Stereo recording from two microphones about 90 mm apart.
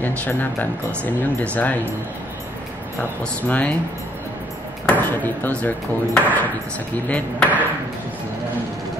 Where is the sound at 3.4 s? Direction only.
15° left (ahead or behind).